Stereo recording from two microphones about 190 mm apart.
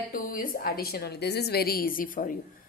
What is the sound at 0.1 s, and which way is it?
A woman's voice, 45° left (ahead or behind).